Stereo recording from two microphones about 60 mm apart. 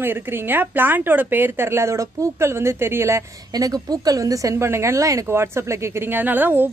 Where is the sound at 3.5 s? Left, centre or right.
Right.